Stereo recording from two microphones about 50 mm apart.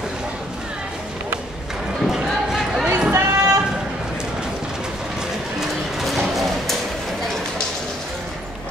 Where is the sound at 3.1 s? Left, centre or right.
Right.